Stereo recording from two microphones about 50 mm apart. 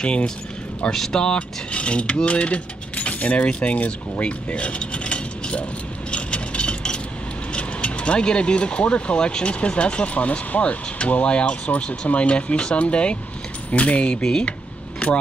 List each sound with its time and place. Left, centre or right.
0.0 s speech: left
6.1 s mechanisms: left
7.5 s speech: left